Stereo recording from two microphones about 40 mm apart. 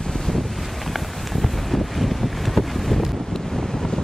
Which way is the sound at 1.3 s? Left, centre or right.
Centre.